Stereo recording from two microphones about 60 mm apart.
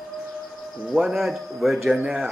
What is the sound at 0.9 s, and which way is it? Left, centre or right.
A man's voice, centre.